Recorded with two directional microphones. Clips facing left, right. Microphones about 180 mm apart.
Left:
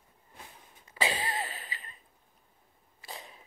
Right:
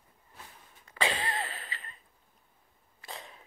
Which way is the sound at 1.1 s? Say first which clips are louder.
Even; 15° left (ahead or behind).